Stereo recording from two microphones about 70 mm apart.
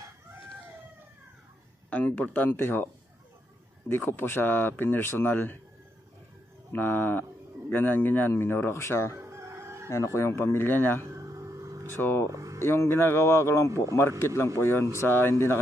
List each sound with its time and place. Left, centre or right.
1.9 s speech: centre
3.9 s speech: left
6.7 s speech: left
9.1 s crowing: right
9.8 s speech: left
11.1 s a sound: right
12.0 s speech: left
12.3 s a sound: right
12.6 s speech: left
13.7 s a man's voice: right
14.2 s speech: left